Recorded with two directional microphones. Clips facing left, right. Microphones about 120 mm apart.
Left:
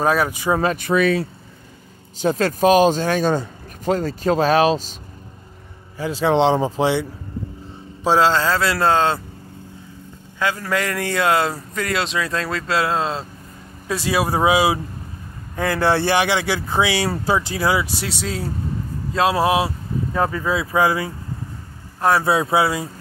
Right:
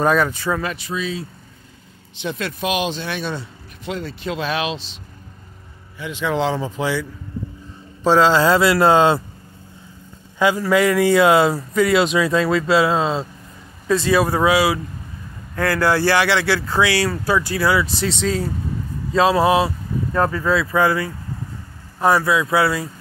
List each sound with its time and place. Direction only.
0.0 s speech: 5° left (ahead or behind)
0.5 s speech: 30° left (ahead or behind)
0.7 s speech: 60° left (ahead or behind)
2.1 s speech: 40° left (ahead or behind)
5.9 s speech: 35° left (ahead or behind)
8.0 s a man's voice: 5° left (ahead or behind)
8.3 s speech: 15° right (ahead or behind)
10.4 s speech: 10° right (ahead or behind)
13.8 s speech: 10° left (ahead or behind)
14.4 s speech: 20° left (ahead or behind)
17.8 s speech: 5° left (ahead or behind)
20.2 s speech: 20° left (ahead or behind)
22.2 s speech: 35° left (ahead or behind)
22.5 s speech: 15° left (ahead or behind)